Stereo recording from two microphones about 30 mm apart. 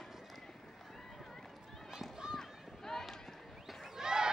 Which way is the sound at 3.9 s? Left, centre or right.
Right.